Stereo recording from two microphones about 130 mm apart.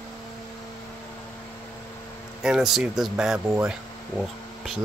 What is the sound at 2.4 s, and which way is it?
Speech, 5° right (ahead or behind).